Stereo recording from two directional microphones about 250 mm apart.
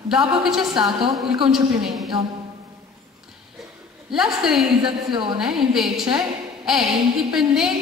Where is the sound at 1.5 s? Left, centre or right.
Centre.